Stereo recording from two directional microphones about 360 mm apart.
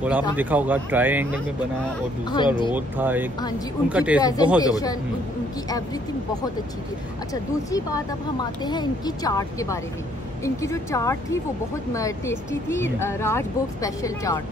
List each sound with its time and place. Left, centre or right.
0.4 s speech: centre
2.3 s speech: centre
2.7 s speech: centre
4.2 s speech: centre
7.7 s speech: centre